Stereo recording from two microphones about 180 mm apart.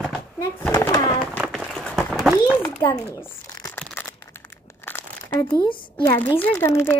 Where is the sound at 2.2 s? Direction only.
10° right (ahead or behind).